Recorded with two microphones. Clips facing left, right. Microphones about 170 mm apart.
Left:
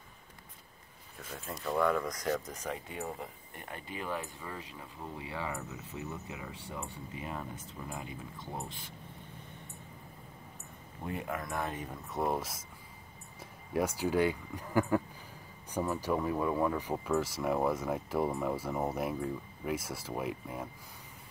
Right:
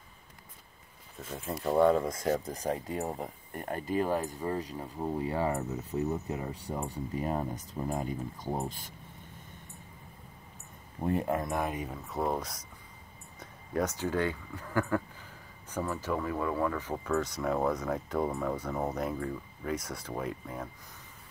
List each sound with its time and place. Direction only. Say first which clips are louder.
1.5 s speech: right 6 dB; 35° right (ahead or behind)
11.0 s speech: right 8 dB; 40° right (ahead or behind); by 12.0 s 10° right (ahead or behind)
12.1 s speech: even; centre (ahead or behind)